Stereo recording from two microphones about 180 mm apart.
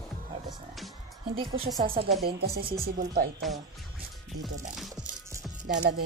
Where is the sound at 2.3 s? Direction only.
60° right (ahead or behind).